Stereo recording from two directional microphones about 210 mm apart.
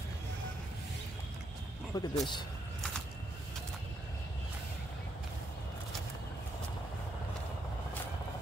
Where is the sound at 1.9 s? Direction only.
20° left (ahead or behind).